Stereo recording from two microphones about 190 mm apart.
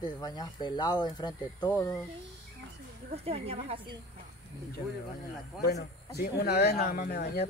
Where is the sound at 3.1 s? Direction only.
30° right (ahead or behind).